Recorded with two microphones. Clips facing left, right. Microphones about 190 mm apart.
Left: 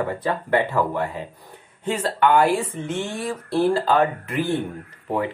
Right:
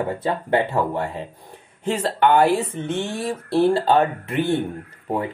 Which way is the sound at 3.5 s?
25° right (ahead or behind).